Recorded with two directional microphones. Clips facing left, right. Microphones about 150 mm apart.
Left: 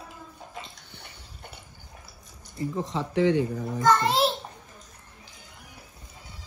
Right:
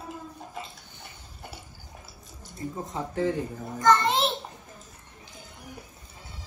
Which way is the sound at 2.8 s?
90° left.